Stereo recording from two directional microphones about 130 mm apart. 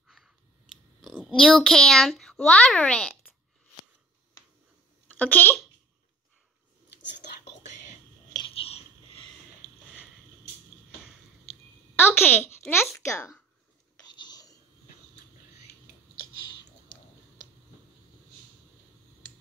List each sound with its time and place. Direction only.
0.2 s scissors: centre (ahead or behind)
1.0 s a child's voice: centre (ahead or behind)
5.1 s speech: 15° left (ahead or behind)
8.5 s a sound: 50° left (ahead or behind)
12.2 s a child's voice: 15° left (ahead or behind)
14.0 s whispering: 30° left (ahead or behind)